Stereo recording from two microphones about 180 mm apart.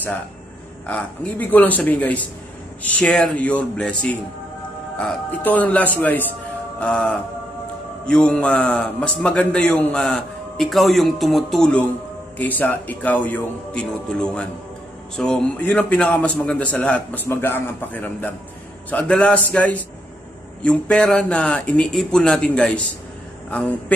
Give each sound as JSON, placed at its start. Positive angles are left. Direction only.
{"t": 0.8, "sound": "a man's voice", "side_deg": 10}